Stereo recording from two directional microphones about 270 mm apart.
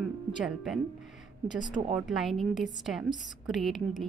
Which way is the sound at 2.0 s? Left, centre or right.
Centre.